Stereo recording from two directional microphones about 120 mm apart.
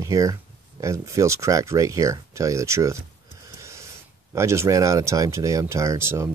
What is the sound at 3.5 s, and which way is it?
Snort, 25° right (ahead or behind).